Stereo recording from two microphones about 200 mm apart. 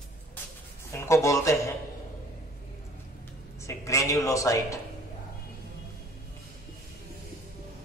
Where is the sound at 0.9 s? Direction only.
15° left (ahead or behind).